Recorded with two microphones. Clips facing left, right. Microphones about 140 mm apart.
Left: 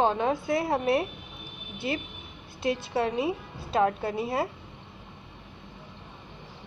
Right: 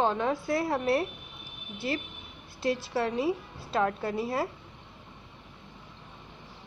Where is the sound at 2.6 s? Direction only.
20° left (ahead or behind).